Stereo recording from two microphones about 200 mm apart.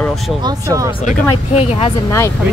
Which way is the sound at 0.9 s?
30° left (ahead or behind).